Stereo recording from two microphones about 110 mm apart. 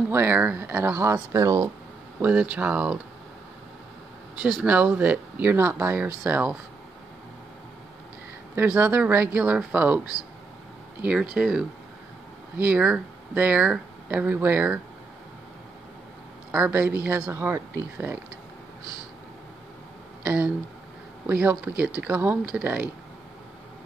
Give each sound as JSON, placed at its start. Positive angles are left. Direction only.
{"t": 0.1, "sound": "speech", "side_deg": -20}
{"t": 2.5, "sound": "speech", "side_deg": -10}
{"t": 4.6, "sound": "speech", "side_deg": -15}
{"t": 8.5, "sound": "speech", "side_deg": -20}
{"t": 11.0, "sound": "speech", "side_deg": -10}
{"t": 16.5, "sound": "speech", "side_deg": -15}
{"t": 20.2, "sound": "speech", "side_deg": -15}